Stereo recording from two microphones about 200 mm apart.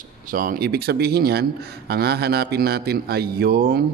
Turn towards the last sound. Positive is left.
turn(degrees=-50)  # may be behind; listen again after turning